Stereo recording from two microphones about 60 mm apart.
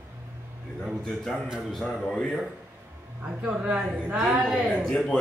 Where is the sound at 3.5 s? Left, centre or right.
Right.